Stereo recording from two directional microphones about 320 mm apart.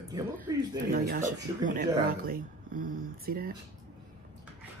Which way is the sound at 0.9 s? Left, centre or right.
Right.